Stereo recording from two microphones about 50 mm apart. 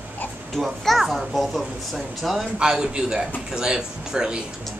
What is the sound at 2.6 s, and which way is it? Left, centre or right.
Speech, centre.